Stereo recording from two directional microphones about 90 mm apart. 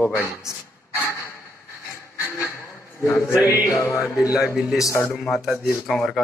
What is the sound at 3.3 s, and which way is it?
Music, 45° left (ahead or behind).